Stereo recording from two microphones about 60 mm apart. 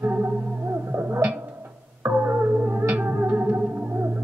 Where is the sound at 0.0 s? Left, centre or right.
Right.